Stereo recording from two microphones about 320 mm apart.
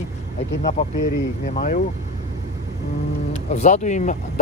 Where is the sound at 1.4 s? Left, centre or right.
Left.